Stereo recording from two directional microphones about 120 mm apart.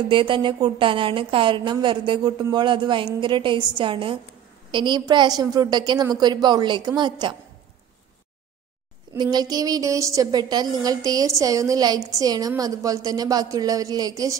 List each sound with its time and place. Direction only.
0.1 s a woman's voice: 45° right (ahead or behind)
9.2 s a woman's voice: 35° right (ahead or behind)